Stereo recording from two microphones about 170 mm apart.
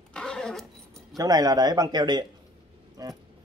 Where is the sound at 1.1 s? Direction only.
20° right (ahead or behind).